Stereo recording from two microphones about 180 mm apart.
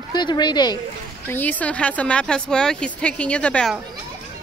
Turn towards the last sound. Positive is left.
turn(degrees=5)  # may be behind; listen again after turning